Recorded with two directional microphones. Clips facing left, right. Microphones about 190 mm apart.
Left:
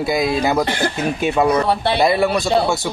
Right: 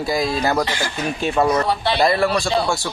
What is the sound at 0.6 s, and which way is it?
Speech, 55° left (ahead or behind).